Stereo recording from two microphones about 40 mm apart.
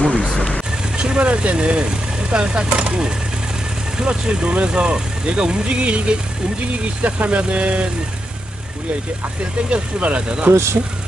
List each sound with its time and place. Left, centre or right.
0.0 s vehicle: left
0.9 s speech: right
4.1 s speech: right
9.7 s speech: right